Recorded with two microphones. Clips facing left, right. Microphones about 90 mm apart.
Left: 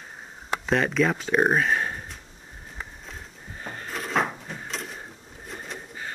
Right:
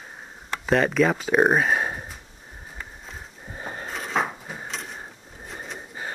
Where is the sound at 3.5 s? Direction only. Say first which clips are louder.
Right 3 dB; 20° right (ahead or behind).